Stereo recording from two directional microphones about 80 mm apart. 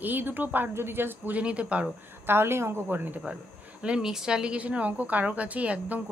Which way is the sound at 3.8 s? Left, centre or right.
Centre.